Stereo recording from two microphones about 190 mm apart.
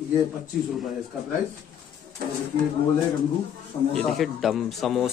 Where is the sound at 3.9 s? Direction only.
Centre (ahead or behind).